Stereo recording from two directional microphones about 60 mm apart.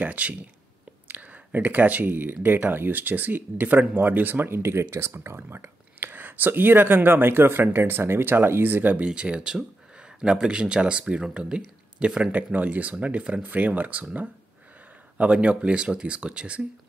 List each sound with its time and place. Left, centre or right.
0.0 s speech: right
1.0 s a sound: right
2.4 s speech: right
8.9 s speech: centre